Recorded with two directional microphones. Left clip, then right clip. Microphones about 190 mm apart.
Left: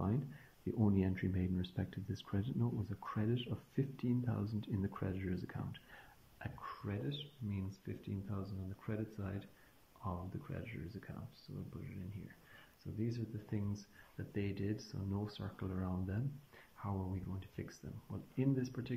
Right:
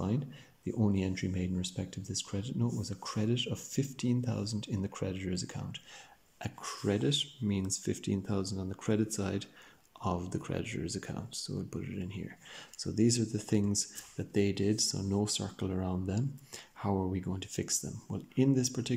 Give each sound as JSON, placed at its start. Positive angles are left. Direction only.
{"t": 0.7, "sound": "speech", "side_deg": -15}
{"t": 6.4, "sound": "speech", "side_deg": -25}
{"t": 16.8, "sound": "speech", "side_deg": -35}